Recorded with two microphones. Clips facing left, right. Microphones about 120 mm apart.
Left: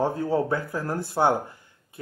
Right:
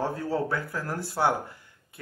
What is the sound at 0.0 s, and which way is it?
Speech, 20° left (ahead or behind).